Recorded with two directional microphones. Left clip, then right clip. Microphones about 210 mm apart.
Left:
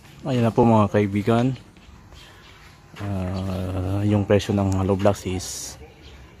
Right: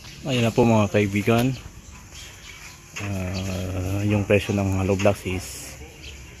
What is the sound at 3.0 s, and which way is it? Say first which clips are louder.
Speech: even; 15° left (ahead or behind).